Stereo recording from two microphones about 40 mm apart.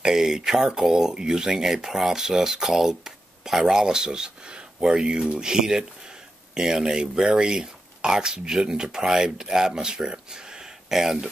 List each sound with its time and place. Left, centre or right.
0.0 s speech: centre
3.7 s speech: centre
10.9 s speech: centre